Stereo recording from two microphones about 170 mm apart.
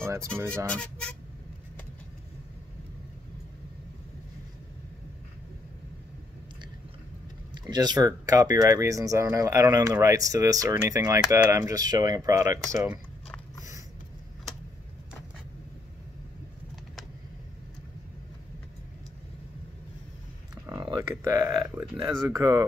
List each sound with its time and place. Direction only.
0.0 s a sound: 15° right (ahead or behind)
0.7 s speech: 5° left (ahead or behind)
7.5 s speech: 25° right (ahead or behind)
20.6 s speech: 20° right (ahead or behind)